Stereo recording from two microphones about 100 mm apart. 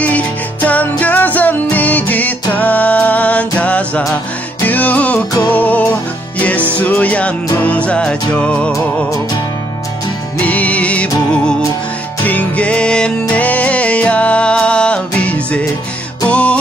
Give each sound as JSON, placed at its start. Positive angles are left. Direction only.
{"t": 0.0, "sound": "music", "side_deg": 15}
{"t": 8.7, "sound": "music", "side_deg": 35}
{"t": 10.4, "sound": "music", "side_deg": 15}